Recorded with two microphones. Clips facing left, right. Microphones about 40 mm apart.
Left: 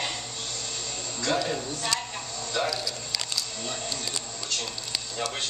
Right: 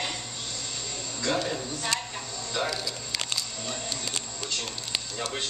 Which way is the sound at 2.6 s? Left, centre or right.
Right.